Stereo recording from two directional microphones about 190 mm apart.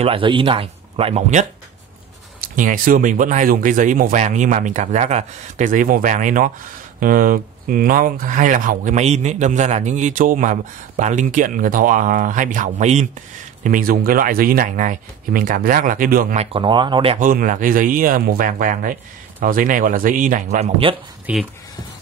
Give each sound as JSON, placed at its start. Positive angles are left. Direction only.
{"t": 0.0, "sound": "speech", "side_deg": -30}
{"t": 2.5, "sound": "speech", "side_deg": -45}
{"t": 16.5, "sound": "speech", "side_deg": -25}
{"t": 17.2, "sound": "speech", "side_deg": -45}
{"t": 21.3, "sound": "speech", "side_deg": -5}